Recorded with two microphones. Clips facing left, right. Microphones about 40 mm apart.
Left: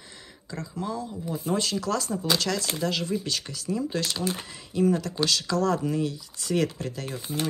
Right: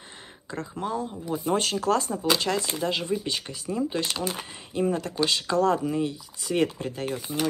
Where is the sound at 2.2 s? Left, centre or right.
Right.